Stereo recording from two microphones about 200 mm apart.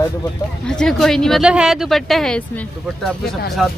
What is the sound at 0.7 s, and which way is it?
Speech, 5° left (ahead or behind).